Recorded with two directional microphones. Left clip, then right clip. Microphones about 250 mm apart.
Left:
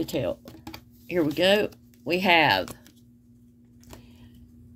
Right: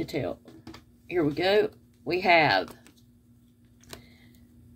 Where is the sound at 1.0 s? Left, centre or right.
Left.